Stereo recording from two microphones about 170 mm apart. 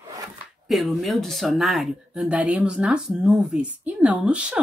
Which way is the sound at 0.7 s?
Centre (ahead or behind).